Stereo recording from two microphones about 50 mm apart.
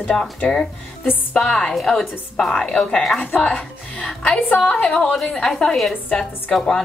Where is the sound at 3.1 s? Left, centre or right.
Left.